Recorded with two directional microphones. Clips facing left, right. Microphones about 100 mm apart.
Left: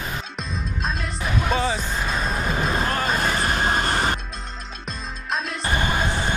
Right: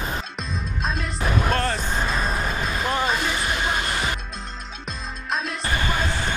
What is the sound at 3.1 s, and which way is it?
Music, 45° left (ahead or behind).